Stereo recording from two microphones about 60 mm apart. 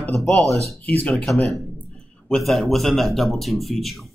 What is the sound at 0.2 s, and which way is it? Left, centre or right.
Speech, centre.